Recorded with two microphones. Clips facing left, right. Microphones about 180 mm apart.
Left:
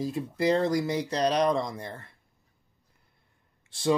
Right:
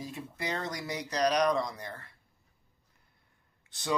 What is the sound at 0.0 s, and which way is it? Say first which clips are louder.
Speech: left 11 dB; 35° left (ahead or behind).